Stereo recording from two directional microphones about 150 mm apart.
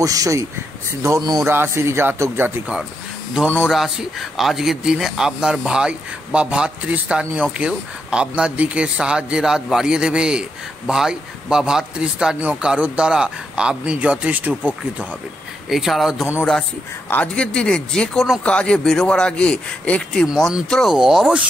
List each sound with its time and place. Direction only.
0.0 s speech: 25° right (ahead or behind)
3.6 s speech: 5° right (ahead or behind)